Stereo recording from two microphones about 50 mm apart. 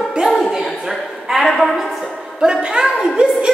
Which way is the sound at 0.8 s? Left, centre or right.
Centre.